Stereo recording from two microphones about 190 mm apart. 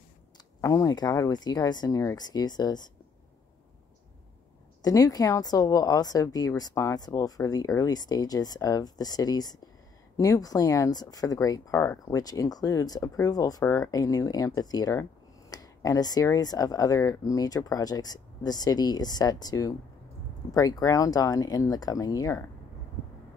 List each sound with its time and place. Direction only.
0.6 s speech: 15° left (ahead or behind)
4.8 s speech: 20° left (ahead or behind)